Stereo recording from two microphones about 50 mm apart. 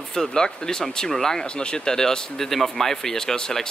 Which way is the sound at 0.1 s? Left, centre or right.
Centre.